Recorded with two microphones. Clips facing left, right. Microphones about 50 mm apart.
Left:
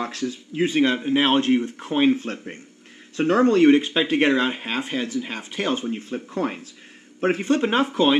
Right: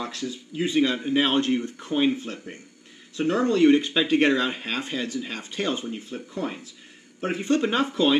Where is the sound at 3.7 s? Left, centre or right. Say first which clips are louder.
Left 2 dB; left.